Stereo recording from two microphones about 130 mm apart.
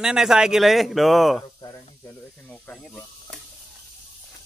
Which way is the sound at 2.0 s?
15° left (ahead or behind).